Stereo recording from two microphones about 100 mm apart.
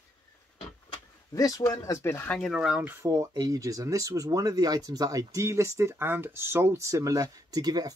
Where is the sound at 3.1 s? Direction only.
35° right (ahead or behind).